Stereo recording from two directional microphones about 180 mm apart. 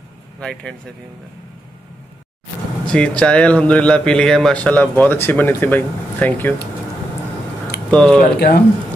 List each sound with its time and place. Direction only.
0.4 s speech: 5° left (ahead or behind)
2.9 s a man's voice: 5° left (ahead or behind)
7.9 s speech: 5° left (ahead or behind)
8.2 s speech: 65° left (ahead or behind)